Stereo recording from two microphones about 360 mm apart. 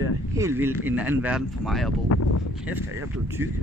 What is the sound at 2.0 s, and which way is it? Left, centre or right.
Speech, left.